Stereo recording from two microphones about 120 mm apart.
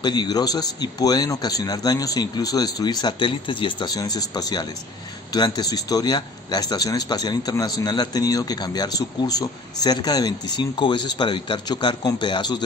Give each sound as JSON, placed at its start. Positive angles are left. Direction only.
{"t": 0.0, "sound": "speech", "side_deg": 35}